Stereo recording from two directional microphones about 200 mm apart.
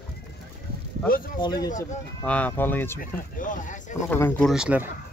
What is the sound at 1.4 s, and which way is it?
Speech, 20° left (ahead or behind).